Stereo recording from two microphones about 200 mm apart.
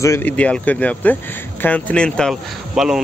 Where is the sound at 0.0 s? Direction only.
10° left (ahead or behind).